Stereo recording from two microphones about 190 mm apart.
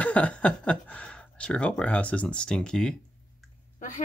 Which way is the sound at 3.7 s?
45° left (ahead or behind).